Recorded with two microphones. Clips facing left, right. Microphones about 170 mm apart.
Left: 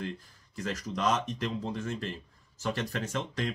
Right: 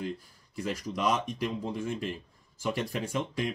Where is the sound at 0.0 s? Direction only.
10° right (ahead or behind).